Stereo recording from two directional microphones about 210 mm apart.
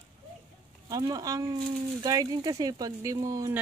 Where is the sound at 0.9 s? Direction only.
15° right (ahead or behind).